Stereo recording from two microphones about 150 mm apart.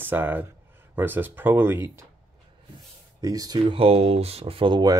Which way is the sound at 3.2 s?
25° right (ahead or behind).